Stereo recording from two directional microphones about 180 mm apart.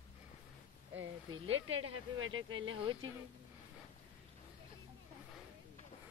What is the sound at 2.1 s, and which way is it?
Speech, 90° right.